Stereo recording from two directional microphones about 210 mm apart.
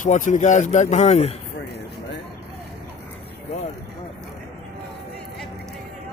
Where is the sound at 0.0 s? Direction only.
35° left (ahead or behind).